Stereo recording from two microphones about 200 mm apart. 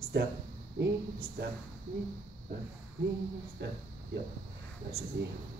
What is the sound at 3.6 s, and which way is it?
Speech, 60° right (ahead or behind).